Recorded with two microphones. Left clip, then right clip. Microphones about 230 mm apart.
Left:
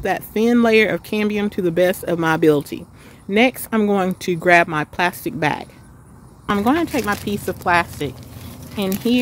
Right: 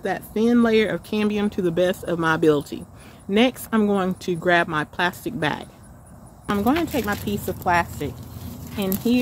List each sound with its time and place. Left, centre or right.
0.0 s speech: left
6.5 s speech: left